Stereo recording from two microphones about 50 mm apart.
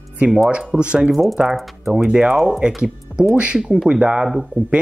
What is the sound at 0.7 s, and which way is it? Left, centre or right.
Speech, right.